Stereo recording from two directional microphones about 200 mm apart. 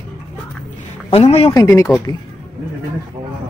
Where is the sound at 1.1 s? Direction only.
30° left (ahead or behind).